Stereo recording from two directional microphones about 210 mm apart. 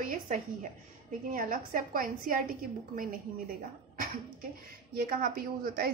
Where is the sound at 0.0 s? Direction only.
40° right (ahead or behind).